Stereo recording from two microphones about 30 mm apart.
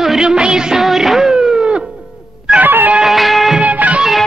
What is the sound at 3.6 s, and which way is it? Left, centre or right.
Music, right.